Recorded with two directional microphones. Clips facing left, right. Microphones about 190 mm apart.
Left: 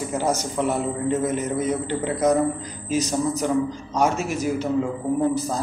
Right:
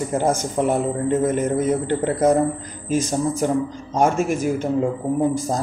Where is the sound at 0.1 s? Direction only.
50° right (ahead or behind).